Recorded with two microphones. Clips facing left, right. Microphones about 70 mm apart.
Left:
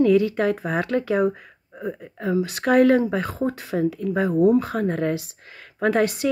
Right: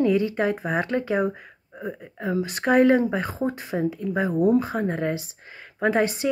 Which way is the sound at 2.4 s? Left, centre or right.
Right.